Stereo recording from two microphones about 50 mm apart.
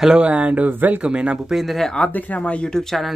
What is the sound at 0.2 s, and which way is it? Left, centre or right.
Speech, right.